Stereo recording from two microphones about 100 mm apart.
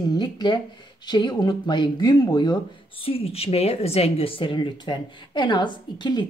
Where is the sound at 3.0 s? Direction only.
75° left (ahead or behind).